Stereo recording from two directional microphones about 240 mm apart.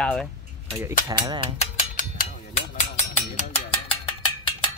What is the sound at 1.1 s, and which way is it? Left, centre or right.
Speech, centre.